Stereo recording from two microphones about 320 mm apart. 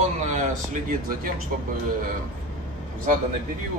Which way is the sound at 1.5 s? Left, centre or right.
Right.